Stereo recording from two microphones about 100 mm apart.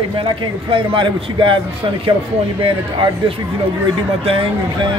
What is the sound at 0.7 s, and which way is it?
Speech, 55° right (ahead or behind).